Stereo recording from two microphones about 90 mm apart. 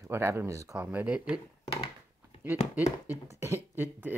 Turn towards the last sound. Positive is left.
turn(degrees=-20)  # may be behind; listen again after turning